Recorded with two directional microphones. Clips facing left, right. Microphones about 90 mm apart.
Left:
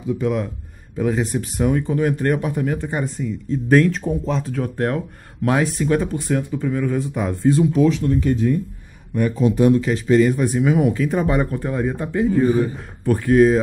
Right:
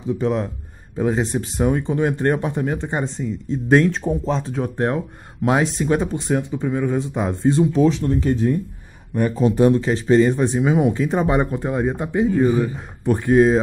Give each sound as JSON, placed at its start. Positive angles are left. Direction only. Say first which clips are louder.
{"t": 0.2, "sound": "speech", "louder": "right 1 dB", "side_deg": -30}